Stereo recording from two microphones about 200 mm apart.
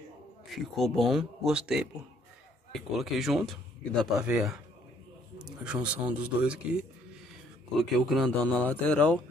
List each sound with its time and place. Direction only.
0.5 s a man's voice: centre (ahead or behind)